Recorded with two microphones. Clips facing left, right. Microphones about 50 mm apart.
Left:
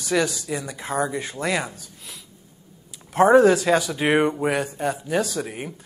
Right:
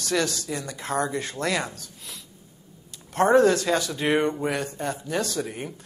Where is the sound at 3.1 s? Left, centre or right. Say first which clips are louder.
Left 4 dB; centre.